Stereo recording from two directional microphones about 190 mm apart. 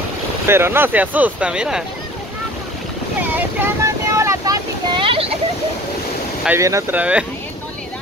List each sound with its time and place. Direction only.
0.5 s speech: 10° right (ahead or behind)
3.2 s vehicle: 10° right (ahead or behind); by 5.3 s 25° right (ahead or behind)
6.4 s speech: 15° right (ahead or behind)